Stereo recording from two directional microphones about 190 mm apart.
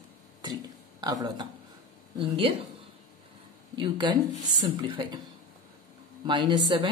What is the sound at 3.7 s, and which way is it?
Speech, 25° right (ahead or behind).